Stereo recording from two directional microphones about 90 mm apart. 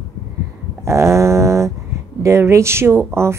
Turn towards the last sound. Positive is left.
turn(degrees=-30)  # may be behind; listen again after turning